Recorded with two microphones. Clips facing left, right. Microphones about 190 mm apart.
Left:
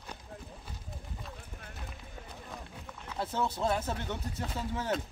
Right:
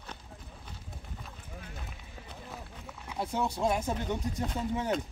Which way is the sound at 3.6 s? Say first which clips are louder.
Right 2 dB; 10° right (ahead or behind).